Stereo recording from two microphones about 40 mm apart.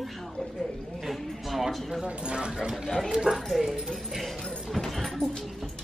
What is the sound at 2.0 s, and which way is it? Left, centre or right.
Speech, right.